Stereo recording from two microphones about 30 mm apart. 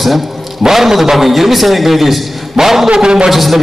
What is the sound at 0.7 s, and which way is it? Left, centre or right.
A man's voice, centre.